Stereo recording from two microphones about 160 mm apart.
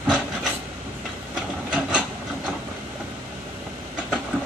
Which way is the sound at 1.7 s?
5° right (ahead or behind).